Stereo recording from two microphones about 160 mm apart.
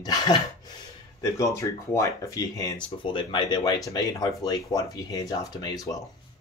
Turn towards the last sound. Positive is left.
turn(degrees=20)  # may be behind; listen again after turning